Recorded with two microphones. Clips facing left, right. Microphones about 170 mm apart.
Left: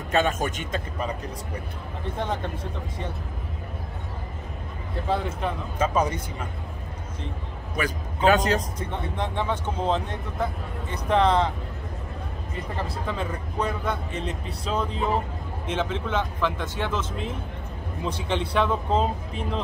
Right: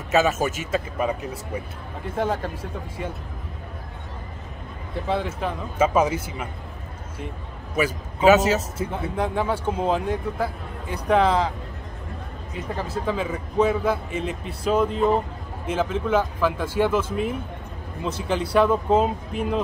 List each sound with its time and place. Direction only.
0.1 s speech: 5° right (ahead or behind)
2.1 s speech: 5° right (ahead or behind)
5.0 s speech: centre (ahead or behind)
7.7 s speech: 5° right (ahead or behind)
12.5 s speech: centre (ahead or behind)